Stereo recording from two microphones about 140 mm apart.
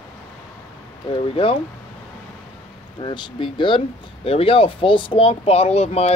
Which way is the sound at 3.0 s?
35° left (ahead or behind).